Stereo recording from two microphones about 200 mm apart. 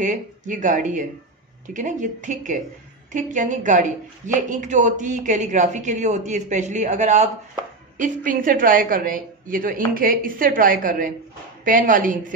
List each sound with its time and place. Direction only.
0.0 s a woman's voice: 40° right (ahead or behind)